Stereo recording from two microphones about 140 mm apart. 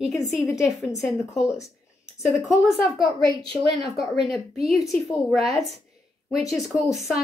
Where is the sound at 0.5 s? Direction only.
5° right (ahead or behind).